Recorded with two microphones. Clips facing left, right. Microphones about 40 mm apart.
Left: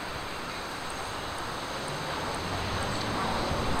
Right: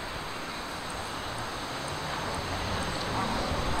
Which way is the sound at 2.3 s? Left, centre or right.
Centre.